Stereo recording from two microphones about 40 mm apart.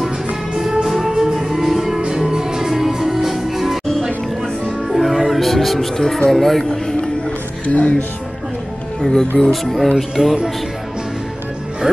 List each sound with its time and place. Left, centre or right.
0.6 s music: centre
6.3 s speech: centre
7.6 s speech: left
9.4 s speech: centre